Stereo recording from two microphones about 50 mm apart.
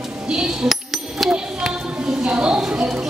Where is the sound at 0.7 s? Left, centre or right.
Centre.